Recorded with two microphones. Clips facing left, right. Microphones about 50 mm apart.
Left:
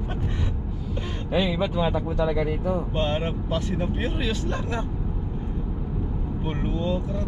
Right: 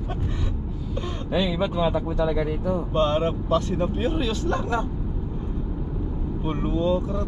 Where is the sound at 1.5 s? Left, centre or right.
Centre.